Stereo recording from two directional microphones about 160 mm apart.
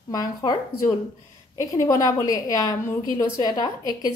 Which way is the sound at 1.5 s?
20° left (ahead or behind).